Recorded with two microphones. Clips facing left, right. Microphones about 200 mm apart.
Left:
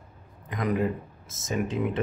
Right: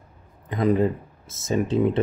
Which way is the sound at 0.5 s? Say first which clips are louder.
Right 6 dB; 30° right (ahead or behind).